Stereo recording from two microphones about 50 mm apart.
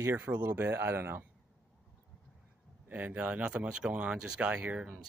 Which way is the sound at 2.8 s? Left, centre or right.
Right.